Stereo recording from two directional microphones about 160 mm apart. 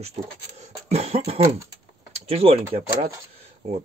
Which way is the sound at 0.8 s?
40° right (ahead or behind).